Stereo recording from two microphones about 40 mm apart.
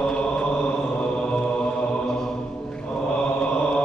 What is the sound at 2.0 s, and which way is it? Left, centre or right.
Mantra, centre.